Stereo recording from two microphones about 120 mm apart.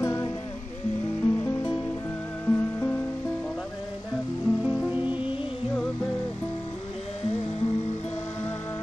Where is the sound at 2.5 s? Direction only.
15° left (ahead or behind).